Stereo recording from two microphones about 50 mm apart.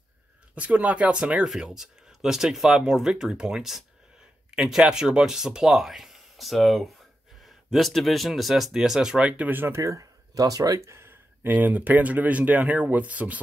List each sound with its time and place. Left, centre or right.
0.6 s speech: right
1.4 s speech: centre
9.5 s speech: right
9.8 s speech: right
10.8 s speech: right
11.4 s speech: right